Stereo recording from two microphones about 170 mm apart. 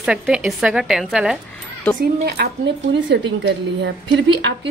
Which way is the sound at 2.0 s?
70° right (ahead or behind).